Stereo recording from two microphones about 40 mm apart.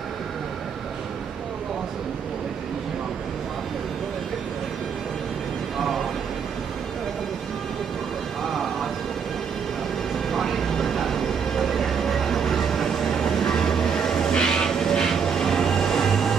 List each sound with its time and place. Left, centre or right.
10.3 s vehicle: centre
14.3 s train: centre